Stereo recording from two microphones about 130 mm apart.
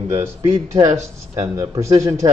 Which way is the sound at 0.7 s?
25° right (ahead or behind).